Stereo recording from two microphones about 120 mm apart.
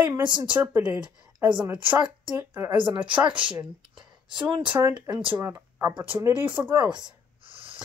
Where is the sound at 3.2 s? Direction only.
45° right (ahead or behind).